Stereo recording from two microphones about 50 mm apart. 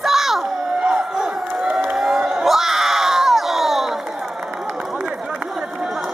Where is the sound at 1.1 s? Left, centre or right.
Centre.